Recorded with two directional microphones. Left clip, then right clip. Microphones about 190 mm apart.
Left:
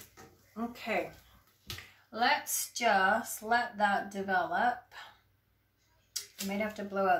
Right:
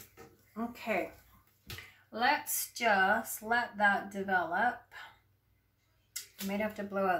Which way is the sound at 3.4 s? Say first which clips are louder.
Even; 10° right (ahead or behind).